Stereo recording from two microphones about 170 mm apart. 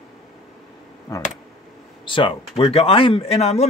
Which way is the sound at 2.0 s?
30° left (ahead or behind).